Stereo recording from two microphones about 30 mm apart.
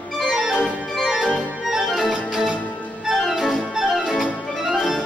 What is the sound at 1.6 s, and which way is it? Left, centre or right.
Organ, centre.